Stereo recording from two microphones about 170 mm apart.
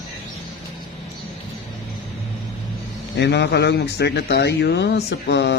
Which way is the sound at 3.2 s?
80° left.